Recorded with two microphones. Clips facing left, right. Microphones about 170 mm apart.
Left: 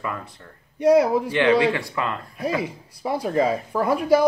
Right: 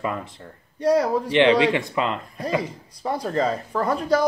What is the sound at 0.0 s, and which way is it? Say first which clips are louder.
Speech: right 3 dB; 20° right (ahead or behind).